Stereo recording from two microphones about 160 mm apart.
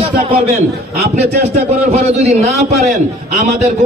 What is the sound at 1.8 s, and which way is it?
A man's voice, 40° right (ahead or behind).